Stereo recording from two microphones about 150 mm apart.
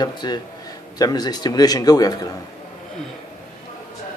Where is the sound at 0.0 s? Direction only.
30° left (ahead or behind).